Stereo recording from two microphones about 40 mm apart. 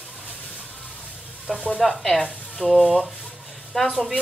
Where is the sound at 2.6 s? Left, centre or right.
Right.